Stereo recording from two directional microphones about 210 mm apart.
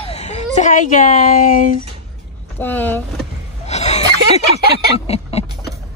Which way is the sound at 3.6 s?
30° left (ahead or behind).